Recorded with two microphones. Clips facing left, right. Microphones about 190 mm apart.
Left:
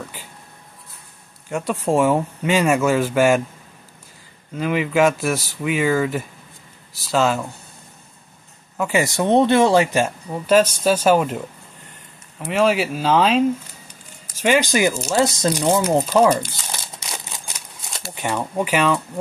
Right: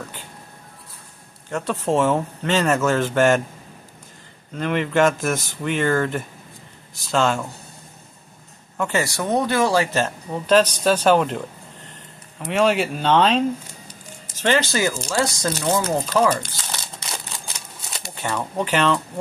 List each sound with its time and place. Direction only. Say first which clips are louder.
1.5 s speech: left 1 dB; 10° left (ahead or behind)
4.6 s speech: left 1 dB; 5° left (ahead or behind)
8.7 s speech: left 2 dB; 10° left (ahead or behind)
9.0 s speech: left 6 dB; 25° left (ahead or behind)
16.7 s crumpling: right 3 dB; 5° left (ahead or behind)
18.1 s speech: left 2 dB; 15° left (ahead or behind)